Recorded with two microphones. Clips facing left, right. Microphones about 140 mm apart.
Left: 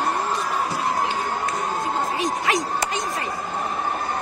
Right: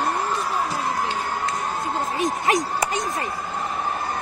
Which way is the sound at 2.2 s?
45° right (ahead or behind).